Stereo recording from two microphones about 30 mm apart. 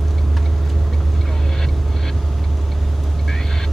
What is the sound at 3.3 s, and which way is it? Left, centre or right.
Vehicle, centre.